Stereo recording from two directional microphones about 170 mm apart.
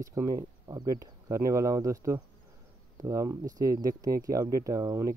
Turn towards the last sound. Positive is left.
turn(degrees=-20)  # may be behind; listen again after turning